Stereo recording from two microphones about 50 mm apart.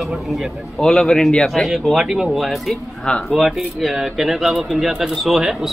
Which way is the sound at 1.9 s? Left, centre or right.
Centre.